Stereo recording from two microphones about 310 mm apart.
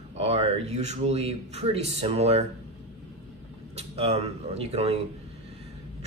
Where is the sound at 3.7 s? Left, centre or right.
Centre.